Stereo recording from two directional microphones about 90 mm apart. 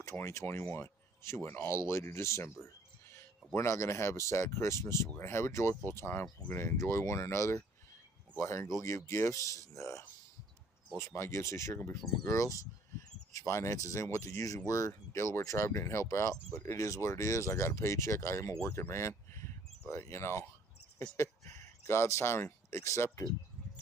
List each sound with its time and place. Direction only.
0.0 s speech: 35° left (ahead or behind)
2.6 s music: 30° left (ahead or behind)
3.5 s speech: 30° left (ahead or behind)